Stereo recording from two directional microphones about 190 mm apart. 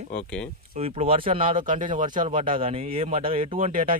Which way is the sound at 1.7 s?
40° right (ahead or behind).